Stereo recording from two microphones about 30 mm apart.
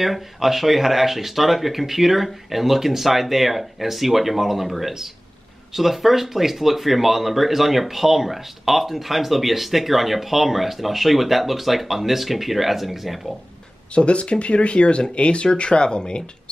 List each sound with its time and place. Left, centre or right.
0.0 s speech: centre
13.9 s speech: left